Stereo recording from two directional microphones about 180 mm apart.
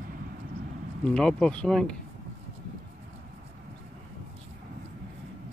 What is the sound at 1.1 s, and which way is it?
Speech, 5° left (ahead or behind).